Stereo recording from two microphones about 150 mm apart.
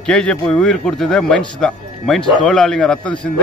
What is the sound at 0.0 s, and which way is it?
A man's voice, 5° left (ahead or behind).